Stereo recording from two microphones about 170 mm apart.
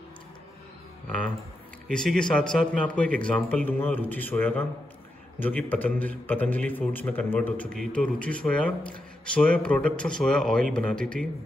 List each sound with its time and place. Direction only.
1.9 s a man's voice: 5° left (ahead or behind)